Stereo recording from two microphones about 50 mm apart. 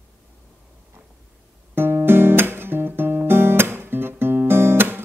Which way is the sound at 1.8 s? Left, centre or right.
Right.